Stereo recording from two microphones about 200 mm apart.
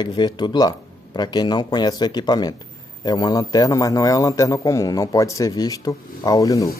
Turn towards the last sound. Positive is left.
turn(degrees=15)  # may be behind; listen again after turning